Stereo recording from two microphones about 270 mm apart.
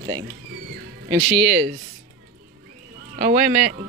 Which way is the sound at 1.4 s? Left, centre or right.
Centre.